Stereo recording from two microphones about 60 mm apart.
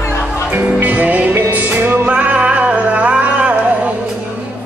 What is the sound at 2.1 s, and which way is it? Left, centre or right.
Music, right.